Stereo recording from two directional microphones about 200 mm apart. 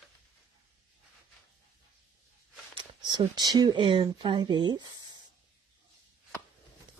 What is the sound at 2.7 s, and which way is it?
Speech, 25° right (ahead or behind).